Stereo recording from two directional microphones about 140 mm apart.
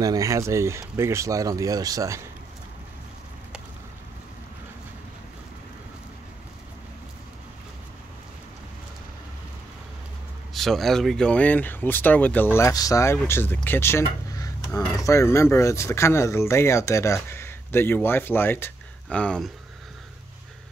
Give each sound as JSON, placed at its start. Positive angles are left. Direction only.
{"t": 0.0, "sound": "speech", "side_deg": -25}
{"t": 10.5, "sound": "speech", "side_deg": 0}